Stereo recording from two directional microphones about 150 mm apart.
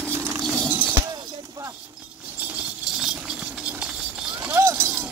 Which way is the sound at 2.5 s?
5° right (ahead or behind).